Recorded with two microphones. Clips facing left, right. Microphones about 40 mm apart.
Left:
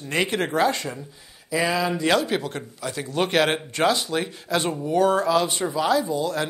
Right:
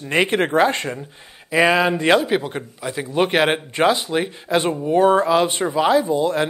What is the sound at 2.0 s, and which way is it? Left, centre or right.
Speech, right.